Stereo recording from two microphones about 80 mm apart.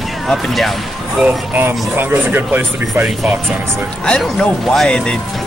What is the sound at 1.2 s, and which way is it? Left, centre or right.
Speech, right.